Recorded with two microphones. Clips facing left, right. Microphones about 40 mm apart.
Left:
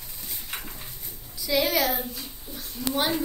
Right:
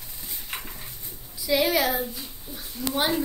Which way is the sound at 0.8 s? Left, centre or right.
Centre.